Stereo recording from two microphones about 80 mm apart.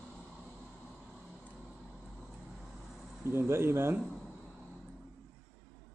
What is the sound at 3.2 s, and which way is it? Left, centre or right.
Speech, right.